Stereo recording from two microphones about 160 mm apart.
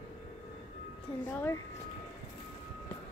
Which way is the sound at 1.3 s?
15° left (ahead or behind).